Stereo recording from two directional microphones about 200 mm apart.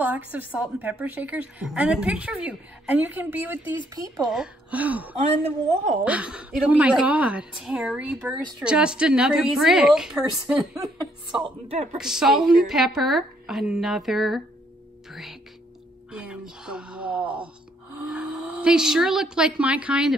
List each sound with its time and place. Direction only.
0.0 s a woman's voice: 10° right (ahead or behind)
11.4 s a man's voice: 30° right (ahead or behind)
12.0 s a woman's voice: centre (ahead or behind)
15.0 s music: centre (ahead or behind)
16.1 s a sound: 5° right (ahead or behind)
18.1 s speech: 5° right (ahead or behind)